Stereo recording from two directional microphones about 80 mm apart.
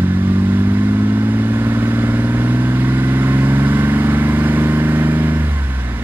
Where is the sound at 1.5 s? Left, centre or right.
Right.